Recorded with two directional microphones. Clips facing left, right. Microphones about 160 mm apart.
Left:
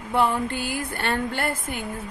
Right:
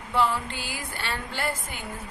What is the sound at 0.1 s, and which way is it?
A man's voice, 55° left (ahead or behind).